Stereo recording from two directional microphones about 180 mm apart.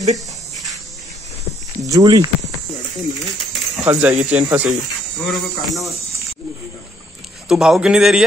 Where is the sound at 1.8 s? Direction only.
20° right (ahead or behind).